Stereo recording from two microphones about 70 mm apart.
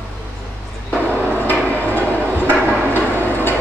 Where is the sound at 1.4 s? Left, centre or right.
Left.